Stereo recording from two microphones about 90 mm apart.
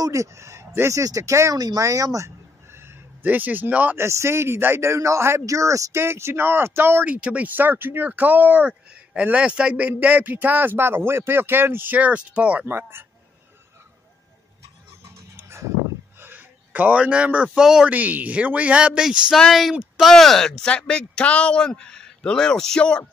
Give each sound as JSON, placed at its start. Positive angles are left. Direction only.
{"t": 0.0, "sound": "speech", "side_deg": -35}
{"t": 7.2, "sound": "speech", "side_deg": -15}
{"t": 12.6, "sound": "speech", "side_deg": -25}
{"t": 15.3, "sound": "a sound", "side_deg": -30}
{"t": 16.2, "sound": "speech", "side_deg": -20}
{"t": 17.9, "sound": "speech", "side_deg": -15}
{"t": 19.3, "sound": "speech", "side_deg": 0}
{"t": 19.7, "sound": "speech", "side_deg": -10}
{"t": 20.1, "sound": "speech", "side_deg": 5}